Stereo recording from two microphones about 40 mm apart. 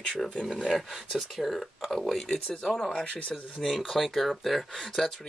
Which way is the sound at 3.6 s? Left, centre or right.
Centre.